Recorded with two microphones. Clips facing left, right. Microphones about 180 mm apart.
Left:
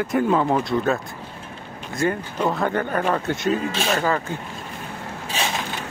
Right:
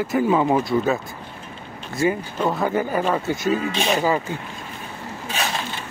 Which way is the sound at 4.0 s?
10° right (ahead or behind).